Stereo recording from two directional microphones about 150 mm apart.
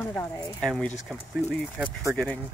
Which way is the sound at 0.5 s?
5° left (ahead or behind).